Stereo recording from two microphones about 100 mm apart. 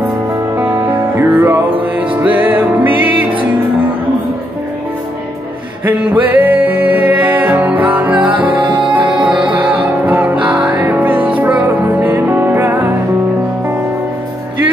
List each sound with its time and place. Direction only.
0.6 s music: 20° right (ahead or behind)
6.0 s music: 15° right (ahead or behind)
8.6 s music: 50° right (ahead or behind)
9.1 s music: 10° right (ahead or behind)